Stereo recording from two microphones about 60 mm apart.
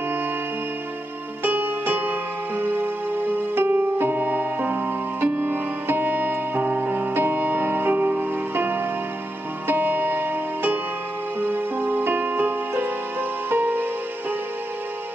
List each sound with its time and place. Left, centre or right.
1.4 s music: right